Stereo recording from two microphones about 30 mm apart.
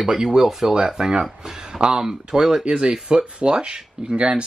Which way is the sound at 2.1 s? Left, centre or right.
Centre.